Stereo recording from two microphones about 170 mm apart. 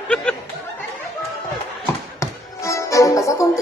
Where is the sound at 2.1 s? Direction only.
15° left (ahead or behind).